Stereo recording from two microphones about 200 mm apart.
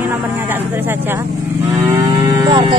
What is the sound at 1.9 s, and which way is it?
Cattle, 20° right (ahead or behind).